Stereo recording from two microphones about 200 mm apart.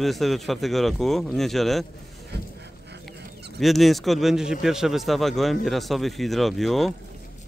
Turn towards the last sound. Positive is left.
turn(degrees=0)  # may be behind; listen again after turning